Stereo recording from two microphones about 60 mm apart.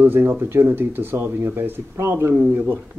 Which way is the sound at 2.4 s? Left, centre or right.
Right.